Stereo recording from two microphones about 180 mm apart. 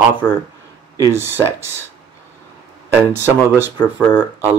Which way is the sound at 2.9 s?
10° right (ahead or behind).